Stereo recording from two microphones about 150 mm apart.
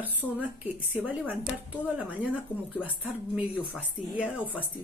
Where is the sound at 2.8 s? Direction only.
10° right (ahead or behind).